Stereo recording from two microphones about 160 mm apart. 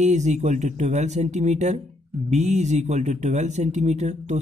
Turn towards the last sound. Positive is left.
turn(degrees=-45)  # may be behind; listen again after turning